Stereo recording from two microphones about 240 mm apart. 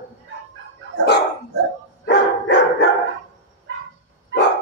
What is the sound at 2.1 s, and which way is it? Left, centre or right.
Dog, left.